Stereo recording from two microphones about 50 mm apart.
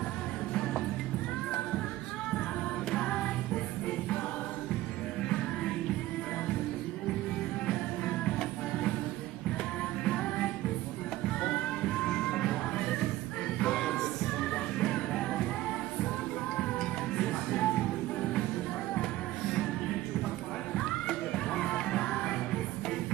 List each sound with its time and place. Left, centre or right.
2.9 s music: centre
7.6 s music: centre
10.0 s music: centre
17.2 s music: centre
20.7 s music: centre